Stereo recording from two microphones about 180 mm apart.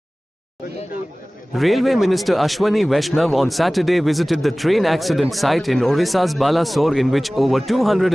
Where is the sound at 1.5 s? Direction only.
Centre (ahead or behind).